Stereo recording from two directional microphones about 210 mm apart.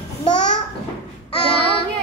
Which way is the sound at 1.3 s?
25° left (ahead or behind).